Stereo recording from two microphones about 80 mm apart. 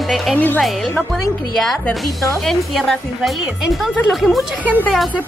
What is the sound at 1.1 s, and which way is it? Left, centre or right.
Speech, centre.